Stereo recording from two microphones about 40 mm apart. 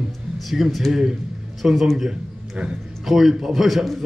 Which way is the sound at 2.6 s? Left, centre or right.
Right.